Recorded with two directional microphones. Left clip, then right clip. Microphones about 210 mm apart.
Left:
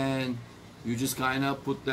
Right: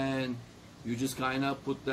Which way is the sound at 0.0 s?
5° right (ahead or behind).